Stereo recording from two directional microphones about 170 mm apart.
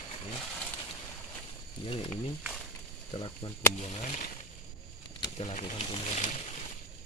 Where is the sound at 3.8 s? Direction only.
40° left (ahead or behind).